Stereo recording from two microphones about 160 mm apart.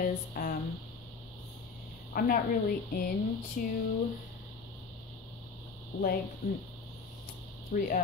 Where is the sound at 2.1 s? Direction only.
65° left (ahead or behind).